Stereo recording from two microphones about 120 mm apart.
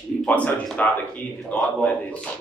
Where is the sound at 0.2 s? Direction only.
10° left (ahead or behind).